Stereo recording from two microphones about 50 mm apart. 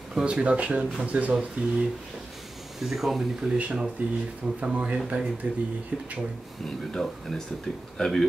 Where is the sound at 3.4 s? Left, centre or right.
Right.